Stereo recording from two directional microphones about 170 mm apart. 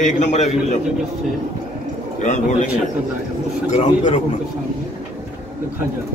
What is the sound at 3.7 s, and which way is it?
Speech, 45° left (ahead or behind).